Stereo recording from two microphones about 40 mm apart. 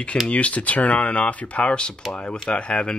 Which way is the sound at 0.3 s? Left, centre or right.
Left.